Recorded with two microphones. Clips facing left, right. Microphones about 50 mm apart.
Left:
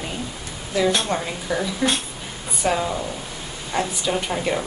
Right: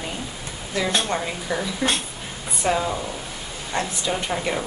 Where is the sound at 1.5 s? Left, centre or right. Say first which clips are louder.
Left 2 dB; centre.